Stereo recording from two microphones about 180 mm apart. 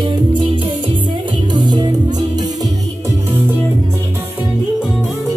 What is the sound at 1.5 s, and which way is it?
Music, 25° right (ahead or behind).